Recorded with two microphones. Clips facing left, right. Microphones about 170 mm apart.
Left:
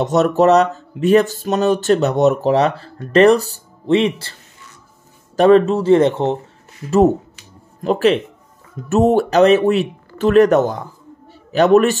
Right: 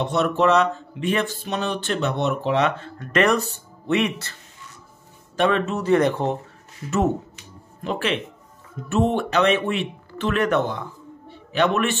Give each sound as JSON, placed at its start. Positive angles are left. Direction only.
{"t": 0.0, "sound": "speech", "side_deg": 40}
{"t": 7.8, "sound": "speech", "side_deg": 40}
{"t": 11.2, "sound": "a sound", "side_deg": 40}